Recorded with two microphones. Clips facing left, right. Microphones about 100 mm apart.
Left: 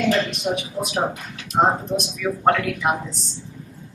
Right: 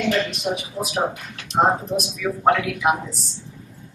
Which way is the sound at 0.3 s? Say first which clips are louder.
Left 1 dB; centre (ahead or behind).